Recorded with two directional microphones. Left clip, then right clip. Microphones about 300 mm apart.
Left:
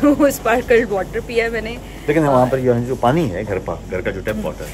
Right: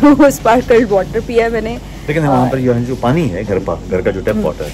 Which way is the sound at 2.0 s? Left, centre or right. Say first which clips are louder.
Right 1 dB; centre.